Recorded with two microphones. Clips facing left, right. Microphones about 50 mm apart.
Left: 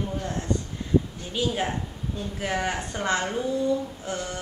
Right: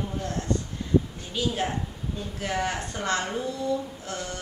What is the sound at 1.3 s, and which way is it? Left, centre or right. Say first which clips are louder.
A woman's voice: left 1 dB; centre.